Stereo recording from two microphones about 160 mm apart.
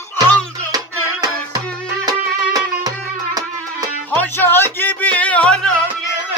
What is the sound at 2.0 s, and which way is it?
Music, 25° right (ahead or behind).